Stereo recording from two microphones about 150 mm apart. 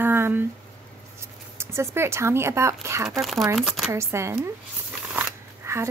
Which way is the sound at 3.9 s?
20° right (ahead or behind).